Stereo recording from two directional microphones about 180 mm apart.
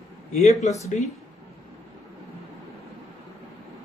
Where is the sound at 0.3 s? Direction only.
40° left (ahead or behind).